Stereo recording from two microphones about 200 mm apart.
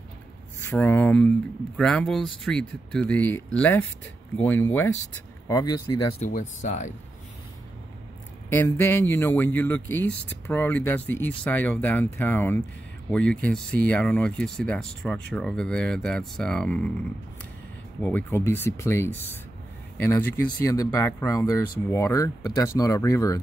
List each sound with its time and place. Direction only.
0.7 s speech: 10° left (ahead or behind)
6.6 s speech: 40° left (ahead or behind)
8.5 s speech: 10° left (ahead or behind)
18.0 s speech: 10° left (ahead or behind)